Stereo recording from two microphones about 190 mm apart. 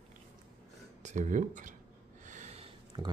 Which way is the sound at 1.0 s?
40° right (ahead or behind).